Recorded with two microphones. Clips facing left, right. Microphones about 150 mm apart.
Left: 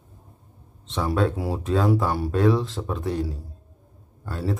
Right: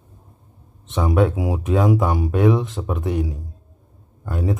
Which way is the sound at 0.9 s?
20° right (ahead or behind).